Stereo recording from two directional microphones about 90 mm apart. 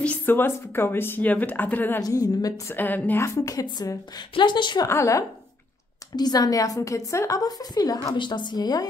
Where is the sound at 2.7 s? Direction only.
20° left (ahead or behind).